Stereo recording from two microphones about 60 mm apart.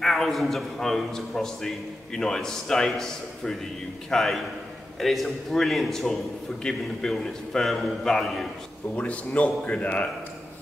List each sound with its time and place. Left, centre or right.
0.0 s a man's voice: centre
8.9 s a man's voice: left